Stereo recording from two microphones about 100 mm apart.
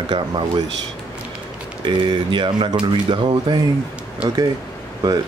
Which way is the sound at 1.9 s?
55° right (ahead or behind).